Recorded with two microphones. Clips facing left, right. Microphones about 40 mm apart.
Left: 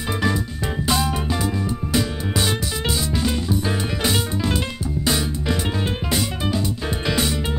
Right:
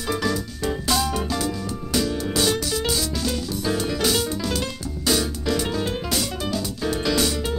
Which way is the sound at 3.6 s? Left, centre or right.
Left.